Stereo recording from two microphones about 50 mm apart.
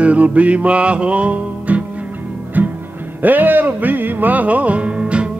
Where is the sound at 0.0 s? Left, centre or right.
Right.